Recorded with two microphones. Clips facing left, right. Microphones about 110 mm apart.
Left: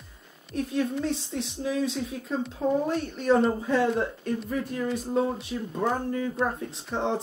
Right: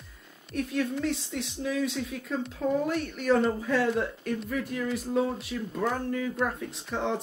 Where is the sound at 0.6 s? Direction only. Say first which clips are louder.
Left 2 dB; 30° left (ahead or behind).